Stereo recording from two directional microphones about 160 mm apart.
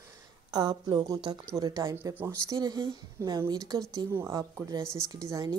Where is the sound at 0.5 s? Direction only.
25° right (ahead or behind).